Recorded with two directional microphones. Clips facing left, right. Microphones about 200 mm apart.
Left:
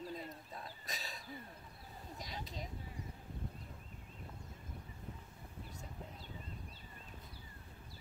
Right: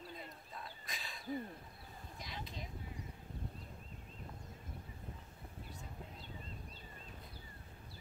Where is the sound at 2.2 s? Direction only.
40° left (ahead or behind).